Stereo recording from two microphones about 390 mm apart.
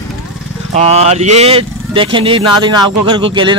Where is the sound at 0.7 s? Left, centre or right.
Centre.